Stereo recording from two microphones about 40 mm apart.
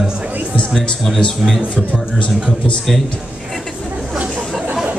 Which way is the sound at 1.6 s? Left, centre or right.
Right.